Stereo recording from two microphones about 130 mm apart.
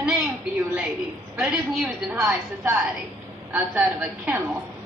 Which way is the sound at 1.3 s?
5° right (ahead or behind).